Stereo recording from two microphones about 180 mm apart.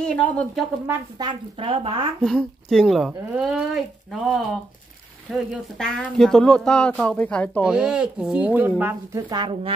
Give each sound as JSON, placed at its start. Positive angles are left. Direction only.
{"t": 0.0, "sound": "speech", "side_deg": 5}
{"t": 1.1, "sound": "a woman's voice", "side_deg": -25}
{"t": 2.2, "sound": "speech", "side_deg": 0}
{"t": 7.6, "sound": "speech", "side_deg": -5}